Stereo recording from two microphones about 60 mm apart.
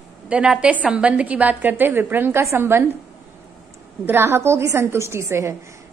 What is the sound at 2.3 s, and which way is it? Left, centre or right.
Speech, right.